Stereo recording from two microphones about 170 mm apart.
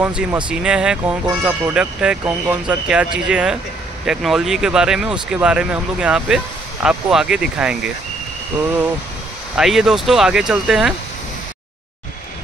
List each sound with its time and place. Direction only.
0.0 s speech: 5° right (ahead or behind)
9.6 s speech: 5° right (ahead or behind)